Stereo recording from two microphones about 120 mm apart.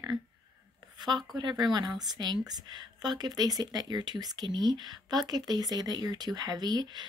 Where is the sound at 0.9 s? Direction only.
35° right (ahead or behind).